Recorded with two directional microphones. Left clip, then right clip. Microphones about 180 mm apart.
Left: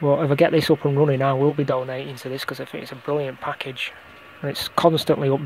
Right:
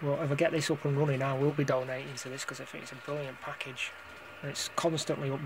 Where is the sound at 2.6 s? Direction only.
45° left (ahead or behind).